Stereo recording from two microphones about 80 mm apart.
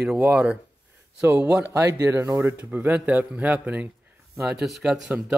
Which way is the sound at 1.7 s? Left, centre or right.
Right.